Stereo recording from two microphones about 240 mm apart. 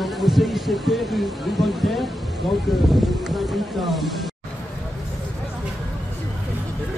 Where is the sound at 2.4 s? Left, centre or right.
Centre.